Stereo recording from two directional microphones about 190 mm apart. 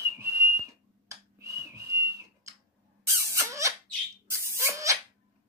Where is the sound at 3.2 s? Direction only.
15° right (ahead or behind).